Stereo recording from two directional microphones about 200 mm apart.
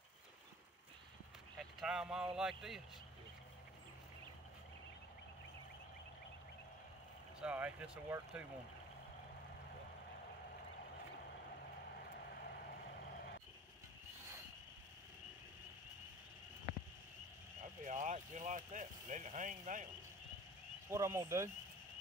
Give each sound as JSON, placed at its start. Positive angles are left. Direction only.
{"t": 1.6, "sound": "speech", "side_deg": 0}
{"t": 7.3, "sound": "speech", "side_deg": -5}
{"t": 17.8, "sound": "a sound", "side_deg": -35}
{"t": 18.7, "sound": "speech", "side_deg": -40}
{"t": 20.9, "sound": "speech", "side_deg": -15}